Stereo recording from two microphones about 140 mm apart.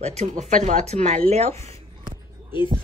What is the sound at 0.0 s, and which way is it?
Speech, 55° right (ahead or behind).